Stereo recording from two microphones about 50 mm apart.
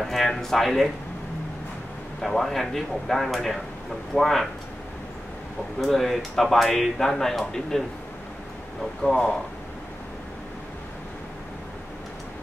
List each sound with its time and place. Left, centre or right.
0.0 s speech: centre
2.2 s speech: centre
5.8 s speech: centre
9.0 s speech: centre